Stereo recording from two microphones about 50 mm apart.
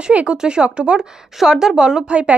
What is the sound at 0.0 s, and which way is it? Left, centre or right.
Speech, right.